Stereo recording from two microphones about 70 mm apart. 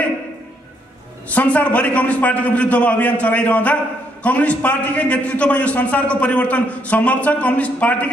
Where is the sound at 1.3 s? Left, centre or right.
Left.